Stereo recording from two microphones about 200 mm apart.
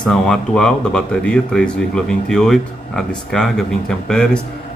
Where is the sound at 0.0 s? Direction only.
5° left (ahead or behind).